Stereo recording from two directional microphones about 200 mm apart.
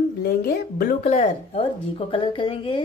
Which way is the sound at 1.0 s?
35° left (ahead or behind).